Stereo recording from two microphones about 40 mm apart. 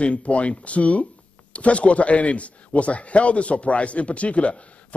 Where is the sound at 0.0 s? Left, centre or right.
Left.